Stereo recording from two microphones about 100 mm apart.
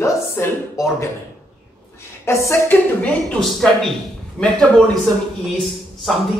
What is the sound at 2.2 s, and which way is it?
Speech, 25° left (ahead or behind).